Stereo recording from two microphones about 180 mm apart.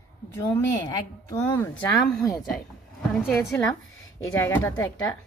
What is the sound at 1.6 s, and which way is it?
Speech, 10° left (ahead or behind).